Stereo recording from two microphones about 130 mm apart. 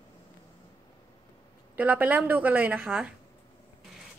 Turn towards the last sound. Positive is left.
turn(degrees=-5)  # may be behind; listen again after turning